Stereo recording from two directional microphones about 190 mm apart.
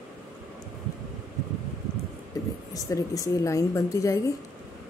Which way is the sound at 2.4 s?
20° left (ahead or behind).